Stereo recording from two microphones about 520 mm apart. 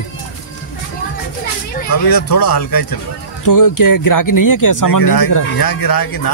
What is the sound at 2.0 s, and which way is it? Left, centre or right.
Speech, left.